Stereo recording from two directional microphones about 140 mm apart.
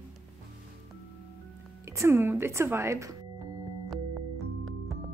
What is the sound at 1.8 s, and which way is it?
Speech, 20° right (ahead or behind).